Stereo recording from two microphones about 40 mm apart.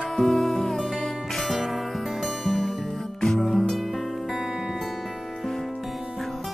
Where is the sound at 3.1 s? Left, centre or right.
Centre.